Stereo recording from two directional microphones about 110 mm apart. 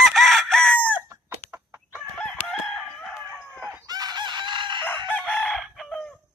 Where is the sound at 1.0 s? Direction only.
25° right (ahead or behind).